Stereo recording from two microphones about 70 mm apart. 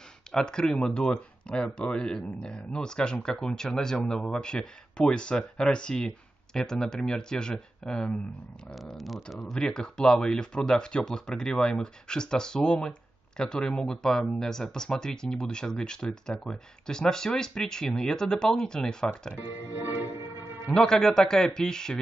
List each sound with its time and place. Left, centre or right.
0.4 s speech: centre
8.7 s speech: centre
19.5 s music: right
20.7 s speech: centre